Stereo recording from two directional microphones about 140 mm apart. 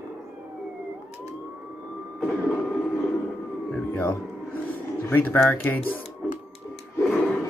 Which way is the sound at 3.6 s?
10° left (ahead or behind).